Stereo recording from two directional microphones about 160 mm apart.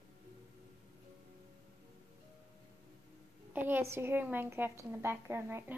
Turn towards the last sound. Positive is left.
turn(degrees=-15)  # may be behind; listen again after turning